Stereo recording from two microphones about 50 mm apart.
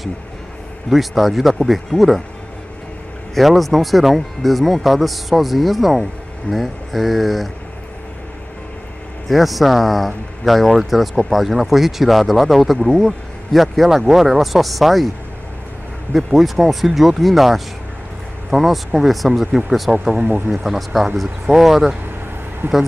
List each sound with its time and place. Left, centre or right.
0.8 s speech: centre
3.3 s speech: centre
9.3 s speech: centre
16.1 s speech: centre
20.2 s speech: right
20.5 s speech: centre
22.6 s speech: right